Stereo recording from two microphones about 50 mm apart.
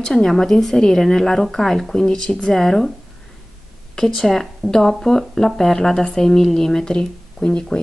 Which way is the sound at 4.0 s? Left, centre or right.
Centre.